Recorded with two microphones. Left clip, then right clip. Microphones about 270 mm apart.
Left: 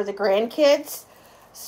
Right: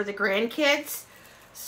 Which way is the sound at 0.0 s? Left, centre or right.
Centre.